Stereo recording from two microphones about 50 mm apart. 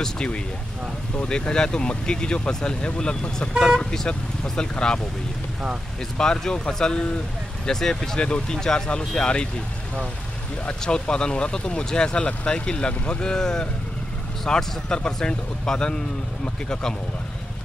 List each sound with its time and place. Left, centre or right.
0.0 s speech: centre
6.1 s speech: centre
10.8 s speech: centre